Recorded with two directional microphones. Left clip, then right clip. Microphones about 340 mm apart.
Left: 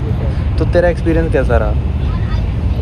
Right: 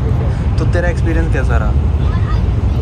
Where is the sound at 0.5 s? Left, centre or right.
Centre.